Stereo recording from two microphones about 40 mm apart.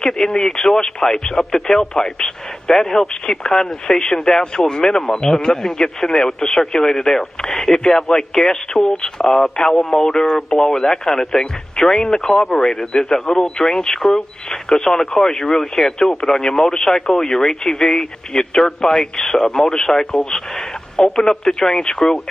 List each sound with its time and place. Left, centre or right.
0.0 s speech: centre
5.2 s speech: centre
5.6 s speech: centre
8.7 s speech: centre
13.4 s speech: centre